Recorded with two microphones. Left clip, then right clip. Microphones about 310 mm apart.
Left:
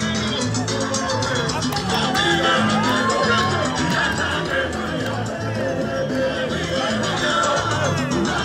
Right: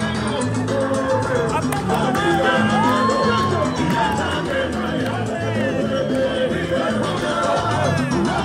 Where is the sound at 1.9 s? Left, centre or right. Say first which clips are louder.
Even; right.